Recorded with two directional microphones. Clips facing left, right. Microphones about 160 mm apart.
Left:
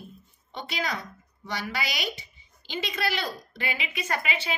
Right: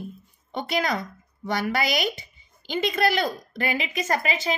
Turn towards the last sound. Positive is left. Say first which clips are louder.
# right 5 dB
turn(degrees=-40)  # may be behind; listen again after turning